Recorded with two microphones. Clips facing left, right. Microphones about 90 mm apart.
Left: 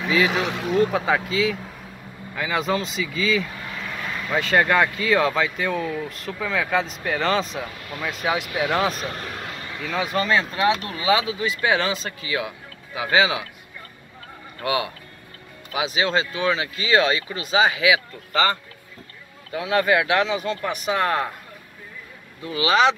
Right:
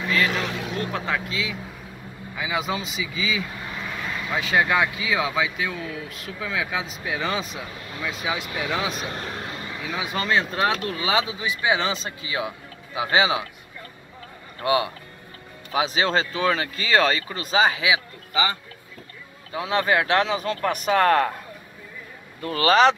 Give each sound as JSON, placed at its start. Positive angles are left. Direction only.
{"t": 0.0, "sound": "speech", "side_deg": 5}
{"t": 9.1, "sound": "a sound", "side_deg": -30}
{"t": 9.8, "sound": "speech", "side_deg": -10}
{"t": 11.1, "sound": "speech", "side_deg": -25}
{"t": 14.6, "sound": "speech", "side_deg": -30}
{"t": 19.5, "sound": "speech", "side_deg": -25}
{"t": 22.4, "sound": "speech", "side_deg": -50}